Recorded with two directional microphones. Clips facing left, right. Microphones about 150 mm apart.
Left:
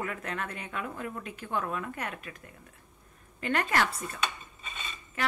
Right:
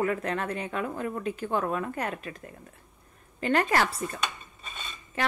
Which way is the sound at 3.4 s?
35° right (ahead or behind).